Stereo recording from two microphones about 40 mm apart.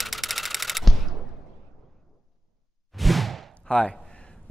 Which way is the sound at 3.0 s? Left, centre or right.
Centre.